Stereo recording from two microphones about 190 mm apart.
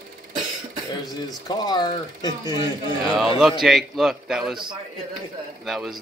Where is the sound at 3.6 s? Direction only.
Centre (ahead or behind).